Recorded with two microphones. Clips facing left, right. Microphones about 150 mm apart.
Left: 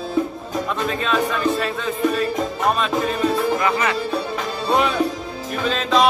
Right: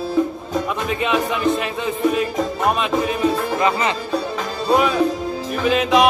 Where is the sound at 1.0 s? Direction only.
15° right (ahead or behind).